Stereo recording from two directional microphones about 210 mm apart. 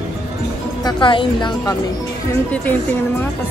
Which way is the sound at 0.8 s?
25° left (ahead or behind).